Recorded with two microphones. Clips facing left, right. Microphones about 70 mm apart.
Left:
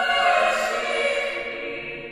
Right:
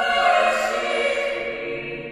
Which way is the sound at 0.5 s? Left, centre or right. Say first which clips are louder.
Right 2 dB; centre.